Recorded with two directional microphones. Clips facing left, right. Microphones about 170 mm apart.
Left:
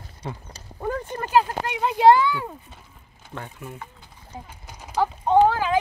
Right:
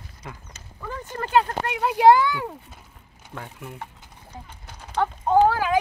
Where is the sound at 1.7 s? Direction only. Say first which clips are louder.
Even; 5° right (ahead or behind).